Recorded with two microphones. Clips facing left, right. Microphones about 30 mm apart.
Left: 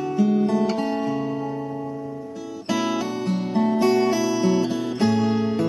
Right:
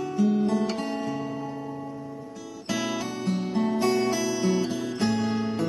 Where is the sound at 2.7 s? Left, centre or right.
Centre.